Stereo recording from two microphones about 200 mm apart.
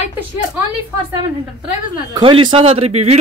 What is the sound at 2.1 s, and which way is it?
Speech, 25° right (ahead or behind).